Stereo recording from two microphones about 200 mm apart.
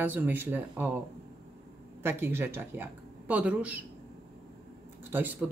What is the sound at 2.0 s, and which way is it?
Speech, 10° right (ahead or behind).